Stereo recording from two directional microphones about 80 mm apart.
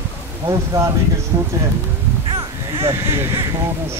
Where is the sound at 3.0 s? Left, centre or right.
Right.